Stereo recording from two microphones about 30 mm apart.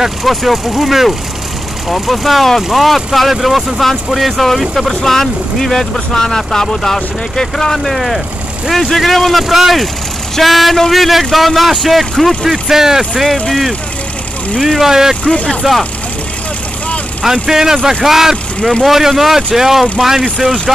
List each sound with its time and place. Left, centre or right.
0.2 s speech: centre
5.1 s speech: centre
12.4 s speech: centre
13.3 s speech: centre
17.2 s speech: centre
18.6 s speech: left
18.9 s speech: centre